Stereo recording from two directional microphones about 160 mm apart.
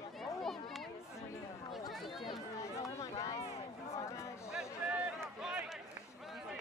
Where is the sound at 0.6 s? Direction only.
Centre (ahead or behind).